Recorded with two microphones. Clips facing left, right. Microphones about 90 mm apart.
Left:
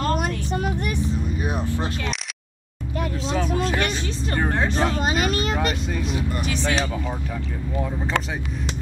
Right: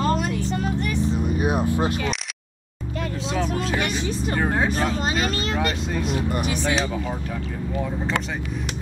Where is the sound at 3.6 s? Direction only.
10° right (ahead or behind).